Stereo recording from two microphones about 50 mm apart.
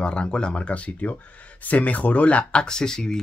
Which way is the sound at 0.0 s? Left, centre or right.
Centre.